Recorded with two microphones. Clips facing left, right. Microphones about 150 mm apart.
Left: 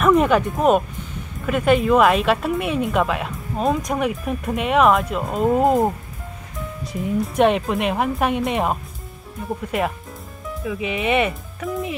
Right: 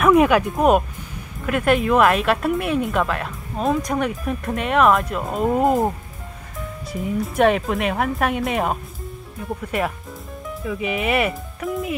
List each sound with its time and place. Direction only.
0.0 s speech: 5° right (ahead or behind)